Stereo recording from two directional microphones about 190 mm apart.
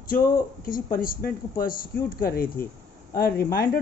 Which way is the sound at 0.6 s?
45° left (ahead or behind).